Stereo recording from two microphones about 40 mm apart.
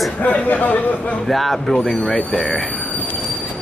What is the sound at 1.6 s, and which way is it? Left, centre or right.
Speech, left.